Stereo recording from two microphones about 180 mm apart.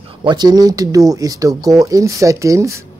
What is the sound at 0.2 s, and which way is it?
Speech, 25° right (ahead or behind).